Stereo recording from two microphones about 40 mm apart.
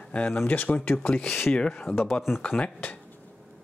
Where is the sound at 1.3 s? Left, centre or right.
Centre.